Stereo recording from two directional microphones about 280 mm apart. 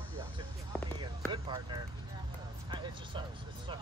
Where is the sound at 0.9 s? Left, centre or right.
Centre.